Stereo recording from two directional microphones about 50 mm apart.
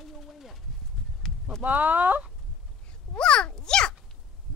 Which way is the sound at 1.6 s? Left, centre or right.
Right.